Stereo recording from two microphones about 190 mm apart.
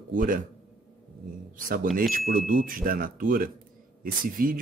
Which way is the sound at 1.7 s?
45° right (ahead or behind).